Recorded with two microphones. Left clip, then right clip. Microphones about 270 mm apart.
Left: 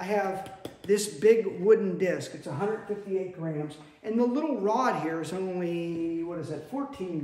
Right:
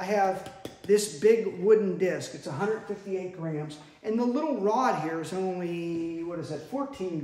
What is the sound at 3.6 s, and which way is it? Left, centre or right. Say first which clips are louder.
Speech: right 1 dB; centre.